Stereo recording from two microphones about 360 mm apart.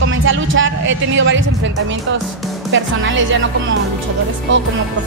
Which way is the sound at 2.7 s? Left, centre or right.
Right.